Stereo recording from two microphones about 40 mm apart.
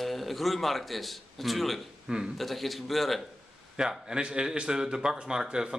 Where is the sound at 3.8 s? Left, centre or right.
Centre.